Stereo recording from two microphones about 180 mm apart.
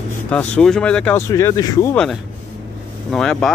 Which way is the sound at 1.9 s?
5° left (ahead or behind).